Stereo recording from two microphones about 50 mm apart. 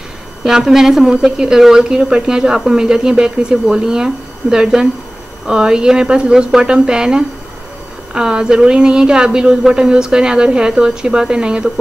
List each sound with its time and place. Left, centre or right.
0.4 s a woman's voice: centre